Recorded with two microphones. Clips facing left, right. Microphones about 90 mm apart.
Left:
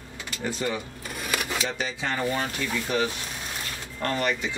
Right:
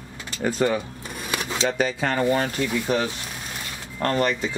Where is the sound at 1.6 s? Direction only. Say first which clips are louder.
Right 7 dB; 50° right (ahead or behind).